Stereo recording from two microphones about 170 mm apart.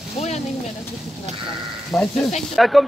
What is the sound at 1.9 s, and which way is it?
Speech, centre (ahead or behind).